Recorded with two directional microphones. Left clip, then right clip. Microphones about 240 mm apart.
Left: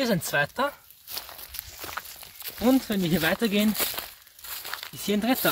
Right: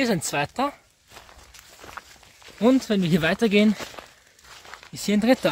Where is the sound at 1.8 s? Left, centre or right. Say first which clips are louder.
Left 4 dB; left.